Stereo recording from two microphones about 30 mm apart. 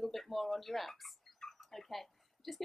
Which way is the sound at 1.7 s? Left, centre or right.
Centre.